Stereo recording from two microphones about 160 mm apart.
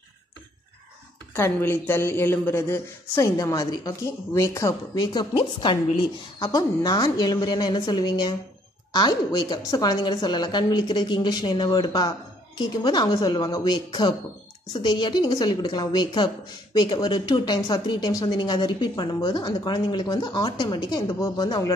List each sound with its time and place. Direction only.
1.3 s speech: 15° left (ahead or behind)